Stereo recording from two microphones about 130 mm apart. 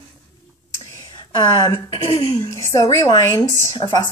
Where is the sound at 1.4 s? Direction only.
35° left (ahead or behind).